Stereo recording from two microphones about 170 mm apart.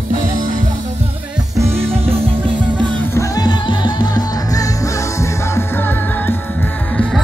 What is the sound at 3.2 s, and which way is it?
Music, 25° left (ahead or behind).